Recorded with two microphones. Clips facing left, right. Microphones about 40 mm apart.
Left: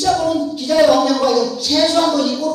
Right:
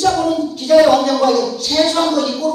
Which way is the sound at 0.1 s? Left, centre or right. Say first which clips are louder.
Even; centre.